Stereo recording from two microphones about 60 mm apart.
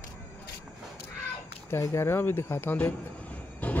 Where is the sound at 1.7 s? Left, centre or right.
Left.